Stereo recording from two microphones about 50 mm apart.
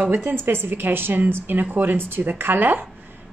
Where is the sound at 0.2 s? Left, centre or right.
Right.